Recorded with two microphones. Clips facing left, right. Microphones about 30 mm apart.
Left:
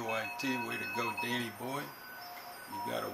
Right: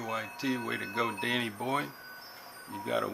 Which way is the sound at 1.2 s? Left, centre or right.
Right.